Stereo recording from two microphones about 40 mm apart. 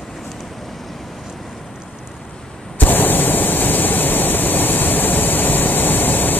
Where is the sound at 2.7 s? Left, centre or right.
Left.